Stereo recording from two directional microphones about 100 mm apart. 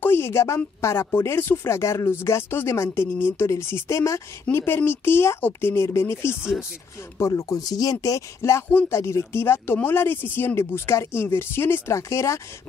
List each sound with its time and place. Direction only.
0.0 s a sound: 25° left (ahead or behind)
0.7 s speech: 30° left (ahead or behind)
6.3 s speech: 10° right (ahead or behind)
7.2 s speech: 30° left (ahead or behind)